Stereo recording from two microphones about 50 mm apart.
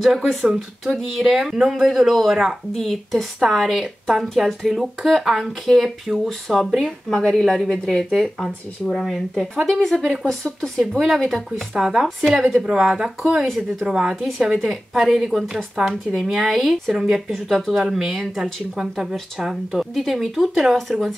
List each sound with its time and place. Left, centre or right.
0.0 s speech: centre
1.2 s speech: centre
7.1 s a woman's voice: centre
9.0 s a woman's voice: centre
10.8 s speech: centre